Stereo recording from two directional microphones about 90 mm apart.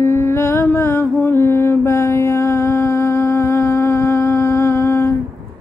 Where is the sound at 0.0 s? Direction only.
30° left (ahead or behind).